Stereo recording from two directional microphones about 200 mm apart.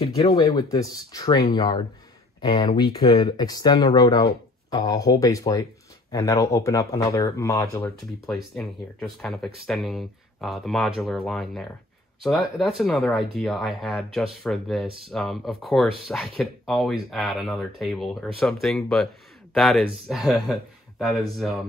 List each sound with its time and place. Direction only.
0.3 s speech: 20° left (ahead or behind)
8.3 s speech: centre (ahead or behind)